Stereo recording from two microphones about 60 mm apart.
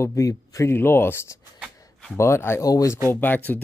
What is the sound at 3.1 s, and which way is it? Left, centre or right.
Speech, left.